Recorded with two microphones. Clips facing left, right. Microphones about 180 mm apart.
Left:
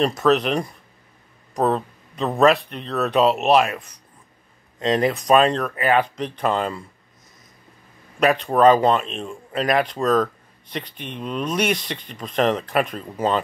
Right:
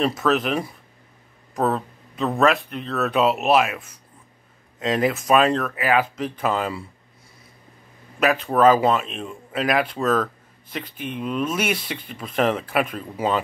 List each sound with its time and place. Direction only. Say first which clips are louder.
0.0 s speech: left 3 dB; centre (ahead or behind)
8.2 s speech: left 2 dB; 5° right (ahead or behind)